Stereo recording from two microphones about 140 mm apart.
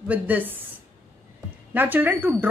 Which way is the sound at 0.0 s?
10° right (ahead or behind).